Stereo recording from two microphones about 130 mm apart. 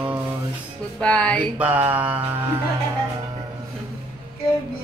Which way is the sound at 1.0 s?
10° left (ahead or behind).